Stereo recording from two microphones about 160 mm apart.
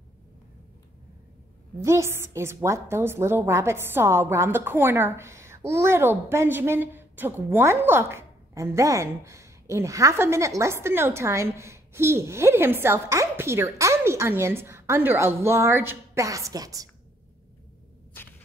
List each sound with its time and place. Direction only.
1.8 s a woman's voice: 20° right (ahead or behind)